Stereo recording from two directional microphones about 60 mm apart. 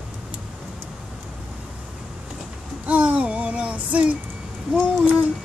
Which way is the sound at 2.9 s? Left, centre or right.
Right.